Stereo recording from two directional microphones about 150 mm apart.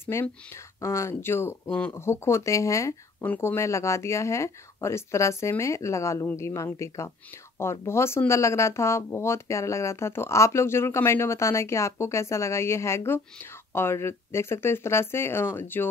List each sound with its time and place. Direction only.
0.0 s speech: 15° left (ahead or behind)